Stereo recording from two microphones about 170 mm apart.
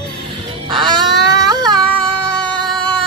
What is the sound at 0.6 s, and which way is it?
Music, 30° right (ahead or behind).